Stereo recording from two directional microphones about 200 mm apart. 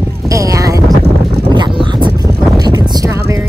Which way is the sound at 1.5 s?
25° right (ahead or behind).